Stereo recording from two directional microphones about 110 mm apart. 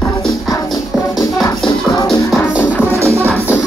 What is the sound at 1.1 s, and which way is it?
Music, 5° left (ahead or behind).